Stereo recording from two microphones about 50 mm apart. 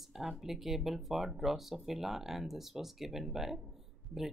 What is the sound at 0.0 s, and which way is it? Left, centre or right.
Speech, centre.